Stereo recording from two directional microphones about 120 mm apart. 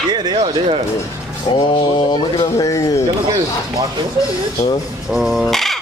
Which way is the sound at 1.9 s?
35° left (ahead or behind).